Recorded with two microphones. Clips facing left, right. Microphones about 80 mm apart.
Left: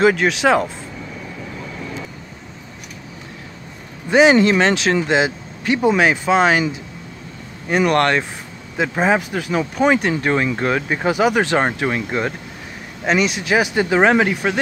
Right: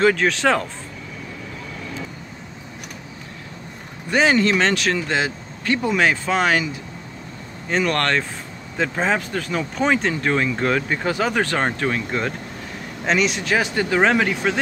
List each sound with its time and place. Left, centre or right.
0.0 s speech: centre
4.1 s speech: centre
7.7 s speech: centre